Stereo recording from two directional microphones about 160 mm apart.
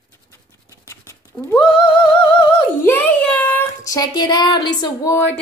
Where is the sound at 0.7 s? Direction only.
20° left (ahead or behind).